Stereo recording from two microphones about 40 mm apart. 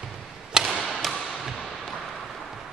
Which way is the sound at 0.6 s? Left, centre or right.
Centre.